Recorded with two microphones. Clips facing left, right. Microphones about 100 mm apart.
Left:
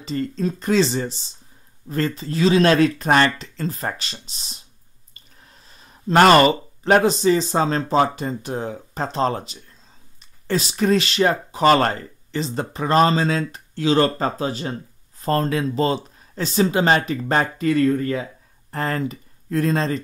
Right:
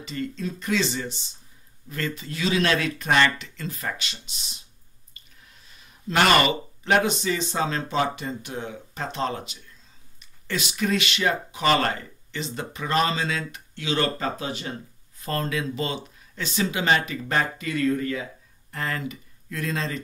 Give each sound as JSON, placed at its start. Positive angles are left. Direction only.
{"t": 0.0, "sound": "speech", "side_deg": 35}
{"t": 5.1, "sound": "a sound", "side_deg": 35}
{"t": 8.2, "sound": "speech", "side_deg": 35}